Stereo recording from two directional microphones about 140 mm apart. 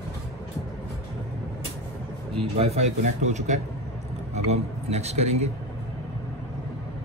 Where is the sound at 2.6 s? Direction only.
55° right (ahead or behind).